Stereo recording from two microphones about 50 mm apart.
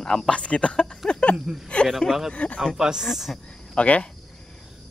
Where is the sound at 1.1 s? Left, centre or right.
Left.